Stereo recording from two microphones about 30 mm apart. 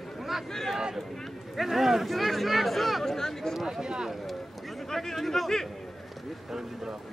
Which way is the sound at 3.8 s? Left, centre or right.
Right.